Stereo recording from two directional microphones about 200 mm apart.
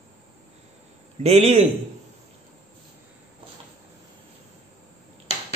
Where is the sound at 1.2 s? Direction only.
30° right (ahead or behind).